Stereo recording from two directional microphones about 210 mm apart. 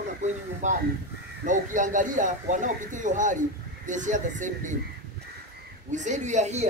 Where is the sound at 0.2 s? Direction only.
35° right (ahead or behind).